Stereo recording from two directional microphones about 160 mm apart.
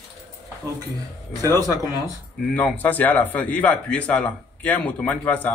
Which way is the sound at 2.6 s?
10° left (ahead or behind).